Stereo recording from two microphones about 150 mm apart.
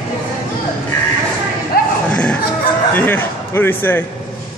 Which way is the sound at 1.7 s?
90° left.